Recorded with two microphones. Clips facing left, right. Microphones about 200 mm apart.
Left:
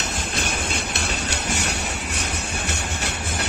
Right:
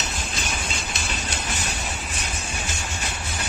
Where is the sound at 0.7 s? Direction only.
65° left (ahead or behind).